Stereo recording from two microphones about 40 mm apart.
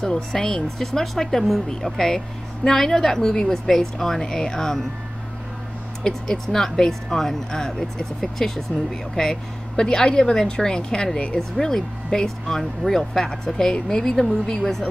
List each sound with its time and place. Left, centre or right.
0.0 s a woman's voice: centre
6.0 s a woman's voice: centre